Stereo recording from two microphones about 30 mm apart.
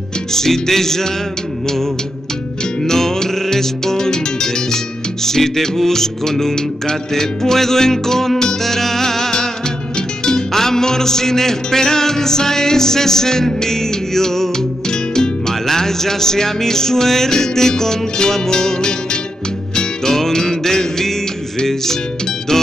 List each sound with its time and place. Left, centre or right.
0.3 s music: centre
2.8 s music: centre
20.1 s music: centre